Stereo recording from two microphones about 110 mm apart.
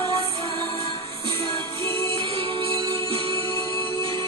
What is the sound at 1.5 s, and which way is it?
Music, 25° left (ahead or behind).